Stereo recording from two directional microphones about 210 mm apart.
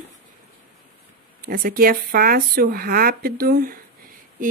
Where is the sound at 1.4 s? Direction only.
45° right (ahead or behind).